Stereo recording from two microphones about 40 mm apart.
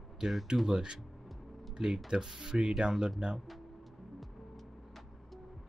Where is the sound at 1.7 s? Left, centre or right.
Centre.